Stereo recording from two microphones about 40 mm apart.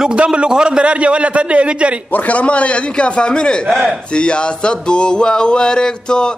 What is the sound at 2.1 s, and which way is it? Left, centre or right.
Speech, left.